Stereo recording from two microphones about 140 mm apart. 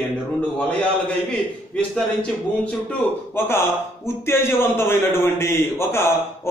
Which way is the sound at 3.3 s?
15° left (ahead or behind).